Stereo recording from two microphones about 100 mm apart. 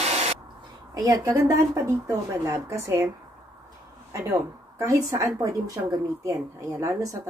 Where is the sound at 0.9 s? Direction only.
35° right (ahead or behind).